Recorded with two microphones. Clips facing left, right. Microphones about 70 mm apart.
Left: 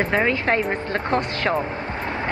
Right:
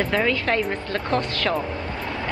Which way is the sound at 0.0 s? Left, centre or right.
Left.